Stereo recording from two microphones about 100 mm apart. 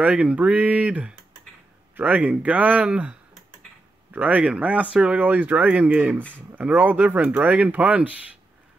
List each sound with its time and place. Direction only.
0.0 s speech: 10° right (ahead or behind)